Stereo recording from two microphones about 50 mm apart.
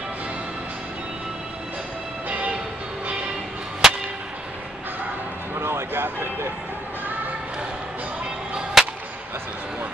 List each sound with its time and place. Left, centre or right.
2.2 s music: right
3.8 s whip: centre
5.5 s music: right
8.8 s music: centre